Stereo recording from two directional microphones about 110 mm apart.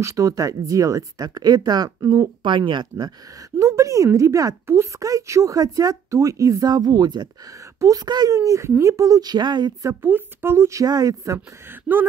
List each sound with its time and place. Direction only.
0.0 s speech: 30° right (ahead or behind)
3.5 s a woman's voice: 30° right (ahead or behind)
10.0 s a woman's voice: 20° right (ahead or behind)